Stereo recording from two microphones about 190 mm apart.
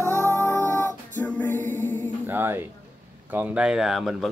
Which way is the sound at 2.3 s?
10° right (ahead or behind).